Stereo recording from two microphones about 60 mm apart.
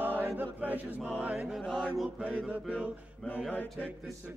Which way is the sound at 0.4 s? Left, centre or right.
Right.